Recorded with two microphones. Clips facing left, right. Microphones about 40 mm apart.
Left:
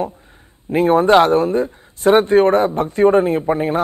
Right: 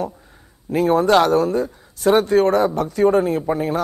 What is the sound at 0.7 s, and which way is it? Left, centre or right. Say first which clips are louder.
Speech: left 3 dB; left.